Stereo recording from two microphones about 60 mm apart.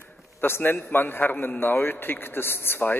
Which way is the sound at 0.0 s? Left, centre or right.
Left.